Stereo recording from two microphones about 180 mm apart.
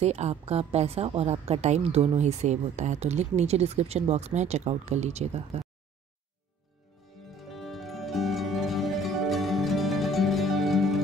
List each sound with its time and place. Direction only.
0.0 s a woman's voice: 35° right (ahead or behind)
7.3 s music: centre (ahead or behind)